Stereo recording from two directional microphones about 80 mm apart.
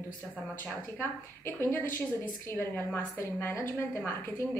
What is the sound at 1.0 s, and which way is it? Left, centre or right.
A woman's voice, left.